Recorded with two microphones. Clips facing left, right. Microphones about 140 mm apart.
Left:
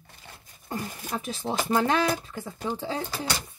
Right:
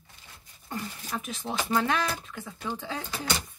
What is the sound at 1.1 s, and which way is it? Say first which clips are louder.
Speech: left 3 dB; 35° left (ahead or behind).